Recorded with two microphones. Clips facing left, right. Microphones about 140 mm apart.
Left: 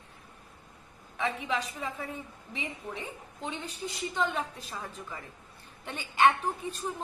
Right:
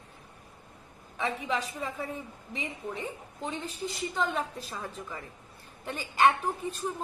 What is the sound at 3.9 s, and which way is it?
Speech, centre (ahead or behind).